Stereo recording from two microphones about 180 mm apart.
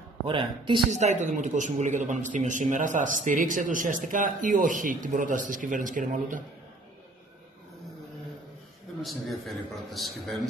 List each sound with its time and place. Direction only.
0.3 s speech: 25° right (ahead or behind)
0.9 s speech: 40° right (ahead or behind)
9.0 s a man's voice: centre (ahead or behind)